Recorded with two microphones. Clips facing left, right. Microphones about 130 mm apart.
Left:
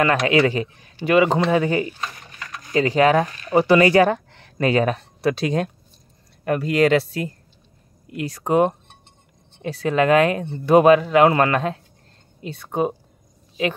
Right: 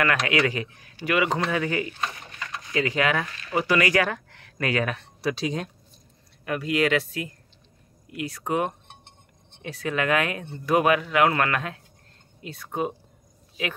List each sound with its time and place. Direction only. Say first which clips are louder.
0.0 s speech: left 6 dB; 30° left (ahead or behind)
5.2 s speech: left 6 dB; 55° left (ahead or behind)
6.4 s speech: left 6 dB; 40° left (ahead or behind)